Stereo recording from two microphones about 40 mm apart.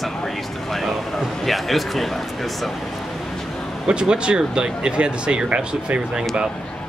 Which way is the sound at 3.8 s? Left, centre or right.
Right.